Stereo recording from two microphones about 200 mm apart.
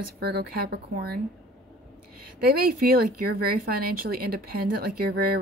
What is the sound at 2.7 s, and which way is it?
Speech, 45° right (ahead or behind).